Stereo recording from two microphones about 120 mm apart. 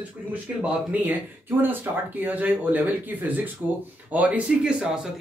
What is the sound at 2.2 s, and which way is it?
Speech, 15° right (ahead or behind).